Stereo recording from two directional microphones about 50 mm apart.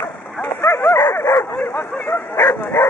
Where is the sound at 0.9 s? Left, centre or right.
Left.